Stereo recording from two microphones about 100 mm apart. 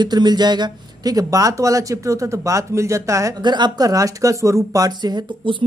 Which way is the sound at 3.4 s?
45° right (ahead or behind).